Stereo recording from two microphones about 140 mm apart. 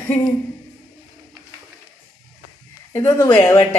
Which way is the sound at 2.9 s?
20° left (ahead or behind).